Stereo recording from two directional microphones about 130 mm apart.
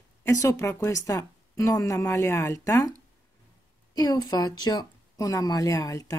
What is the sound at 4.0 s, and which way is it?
Speech, 30° left (ahead or behind).